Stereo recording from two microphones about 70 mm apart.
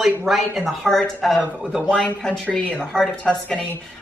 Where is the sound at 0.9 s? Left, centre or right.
Centre.